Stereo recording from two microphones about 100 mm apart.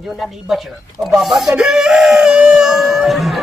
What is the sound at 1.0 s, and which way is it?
A man's voice, 5° right (ahead or behind).